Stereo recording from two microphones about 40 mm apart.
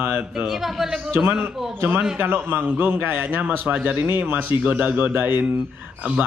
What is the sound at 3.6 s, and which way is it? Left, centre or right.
A man's voice, right.